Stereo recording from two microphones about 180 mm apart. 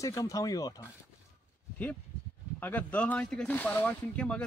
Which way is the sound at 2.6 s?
10° left (ahead or behind).